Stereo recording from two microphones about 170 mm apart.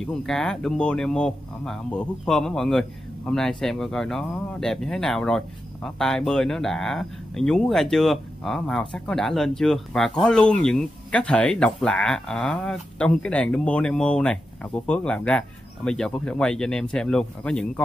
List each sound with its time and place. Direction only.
0.0 s speech: 5° left (ahead or behind)